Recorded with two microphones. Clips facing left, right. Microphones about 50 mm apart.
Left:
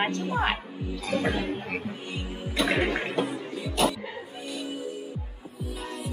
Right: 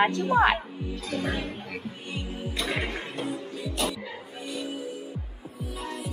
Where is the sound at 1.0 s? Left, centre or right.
Left.